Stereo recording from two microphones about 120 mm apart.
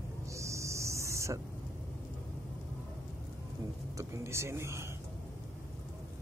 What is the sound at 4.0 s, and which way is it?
Speech, 25° right (ahead or behind).